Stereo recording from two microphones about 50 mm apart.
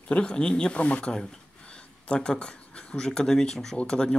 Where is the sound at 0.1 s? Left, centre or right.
Centre.